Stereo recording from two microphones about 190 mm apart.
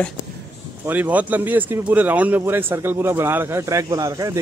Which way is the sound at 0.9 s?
10° right (ahead or behind).